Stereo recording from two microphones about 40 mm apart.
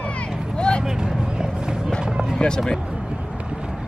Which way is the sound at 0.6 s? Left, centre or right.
Left.